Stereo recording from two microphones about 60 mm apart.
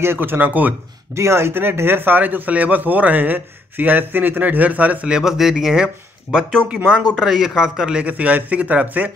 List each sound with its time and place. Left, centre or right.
0.0 s speech: right
1.1 s speech: right
5.1 s a man's voice: centre
7.0 s a man's voice: centre
8.1 s speech: right